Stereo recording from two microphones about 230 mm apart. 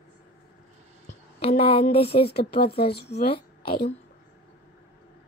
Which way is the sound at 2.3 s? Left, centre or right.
Left.